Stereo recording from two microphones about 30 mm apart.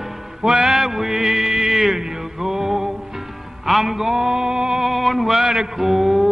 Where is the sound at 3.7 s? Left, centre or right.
Centre; by 4.8 s right.